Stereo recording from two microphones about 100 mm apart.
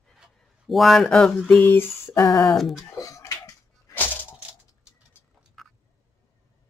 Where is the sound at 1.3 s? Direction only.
15° left (ahead or behind).